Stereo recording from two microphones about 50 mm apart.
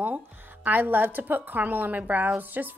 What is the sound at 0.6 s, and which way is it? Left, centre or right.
A woman's voice, right.